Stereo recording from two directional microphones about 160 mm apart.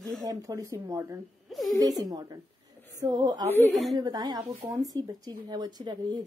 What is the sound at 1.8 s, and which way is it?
A woman's voice, 25° right (ahead or behind).